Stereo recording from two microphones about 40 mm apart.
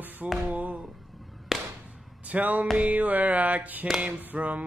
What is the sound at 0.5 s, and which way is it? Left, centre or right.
Speech, right.